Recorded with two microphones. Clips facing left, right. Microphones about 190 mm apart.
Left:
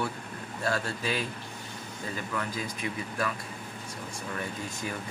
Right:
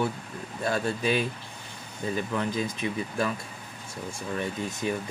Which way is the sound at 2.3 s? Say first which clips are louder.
Right 5 dB; 25° right (ahead or behind).